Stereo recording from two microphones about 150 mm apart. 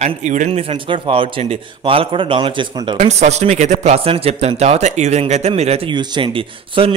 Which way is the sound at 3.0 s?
45° right (ahead or behind).